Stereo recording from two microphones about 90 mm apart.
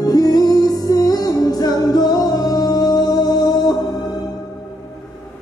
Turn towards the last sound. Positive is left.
turn(degrees=45)  # may be behind; listen again after turning